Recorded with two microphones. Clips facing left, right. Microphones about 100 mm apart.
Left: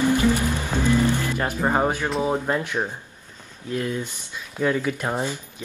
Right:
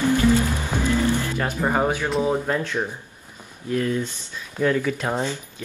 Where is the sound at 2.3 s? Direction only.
15° left (ahead or behind).